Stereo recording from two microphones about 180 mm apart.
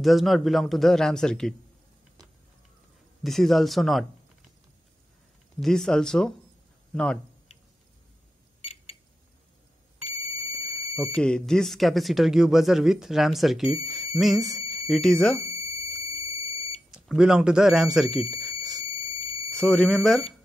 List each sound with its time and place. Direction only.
0.0 s speech: centre (ahead or behind)
3.3 s speech: centre (ahead or behind)
5.6 s speech: centre (ahead or behind)
8.5 s a sound: 35° left (ahead or behind)
10.0 s alarm: 30° left (ahead or behind)
11.0 s speech: 5° left (ahead or behind)
15.3 s a sound: 35° left (ahead or behind)
16.0 s smoke detector: 35° left (ahead or behind)
16.9 s speech: 5° right (ahead or behind)
18.3 s alarm: centre (ahead or behind)
19.5 s speech: 5° left (ahead or behind)